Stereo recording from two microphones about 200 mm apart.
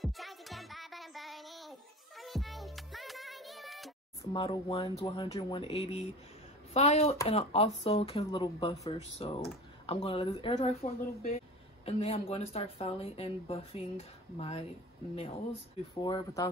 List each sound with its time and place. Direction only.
0.0 s music: centre (ahead or behind)
4.2 s speech: 25° left (ahead or behind)
16.0 s speech: 20° left (ahead or behind)